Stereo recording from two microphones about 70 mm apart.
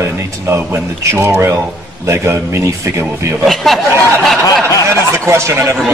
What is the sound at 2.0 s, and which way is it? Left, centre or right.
A man's voice, right.